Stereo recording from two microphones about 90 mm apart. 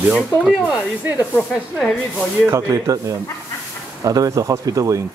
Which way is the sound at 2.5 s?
35° right (ahead or behind).